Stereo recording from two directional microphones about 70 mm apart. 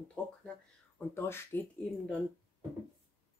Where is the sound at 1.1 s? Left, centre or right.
Left.